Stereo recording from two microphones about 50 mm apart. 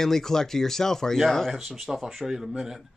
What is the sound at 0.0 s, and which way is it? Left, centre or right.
Speech, centre.